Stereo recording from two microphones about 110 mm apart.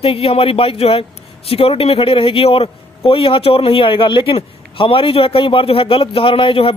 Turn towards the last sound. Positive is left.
turn(degrees=55)  # may be behind; listen again after turning